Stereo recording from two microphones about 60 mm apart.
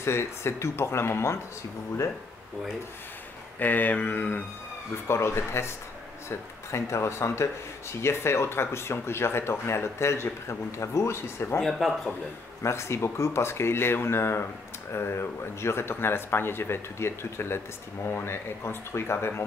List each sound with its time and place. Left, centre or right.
0.0 s speech: left
3.5 s mantra: left
5.0 s speech: left
6.7 s speech: left
11.6 s speech: centre
12.6 s speech: left